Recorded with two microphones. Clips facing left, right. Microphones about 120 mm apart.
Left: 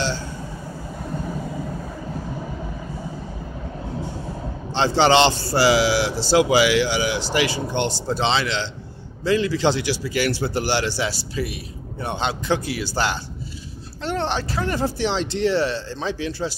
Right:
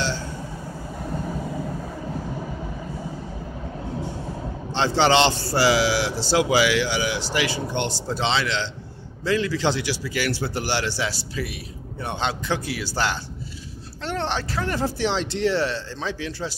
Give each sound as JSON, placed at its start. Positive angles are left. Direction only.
{"t": 4.7, "sound": "speech", "side_deg": 25}
{"t": 14.8, "sound": "speech", "side_deg": 0}
{"t": 15.6, "sound": "speech", "side_deg": 20}